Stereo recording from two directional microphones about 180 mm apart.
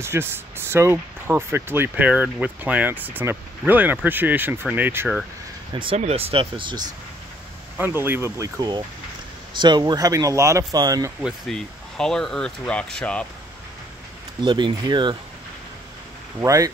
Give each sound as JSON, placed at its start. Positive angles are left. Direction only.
{"t": 0.0, "sound": "speech", "side_deg": -15}
{"t": 5.7, "sound": "speech", "side_deg": -30}
{"t": 7.7, "sound": "speech", "side_deg": -10}
{"t": 11.1, "sound": "speech", "side_deg": 0}
{"t": 14.4, "sound": "speech", "side_deg": -25}
{"t": 16.3, "sound": "speech", "side_deg": -15}